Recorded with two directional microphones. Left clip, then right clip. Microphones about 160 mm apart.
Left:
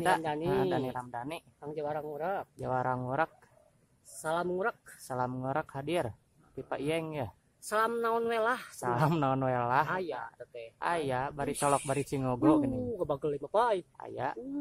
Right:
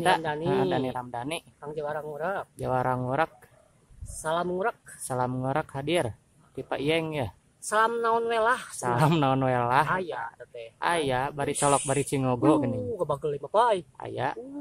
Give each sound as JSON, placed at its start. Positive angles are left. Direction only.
{"t": 0.5, "sound": "speech", "side_deg": 0}
{"t": 1.6, "sound": "speech", "side_deg": 35}
{"t": 2.5, "sound": "speech", "side_deg": 0}
{"t": 4.2, "sound": "speech", "side_deg": 45}
{"t": 5.0, "sound": "speech", "side_deg": 0}
{"t": 7.6, "sound": "a woman's voice", "side_deg": 45}
{"t": 8.7, "sound": "speech", "side_deg": 0}
{"t": 10.4, "sound": "speech", "side_deg": 40}
{"t": 10.8, "sound": "speech", "side_deg": 0}
{"t": 12.9, "sound": "speech", "side_deg": 40}
{"t": 13.9, "sound": "speech", "side_deg": 0}